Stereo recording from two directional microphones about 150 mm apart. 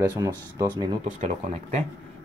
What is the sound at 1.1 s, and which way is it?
Speech, 50° right (ahead or behind).